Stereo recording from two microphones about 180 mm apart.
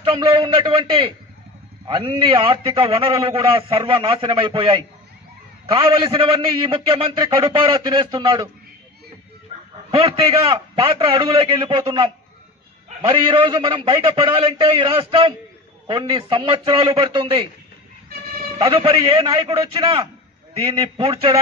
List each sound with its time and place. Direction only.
0.0 s a man's voice: 30° right (ahead or behind)
9.8 s a man's voice: 30° right (ahead or behind)
13.1 s a man's voice: 25° right (ahead or behind)
18.6 s a man's voice: 25° right (ahead or behind)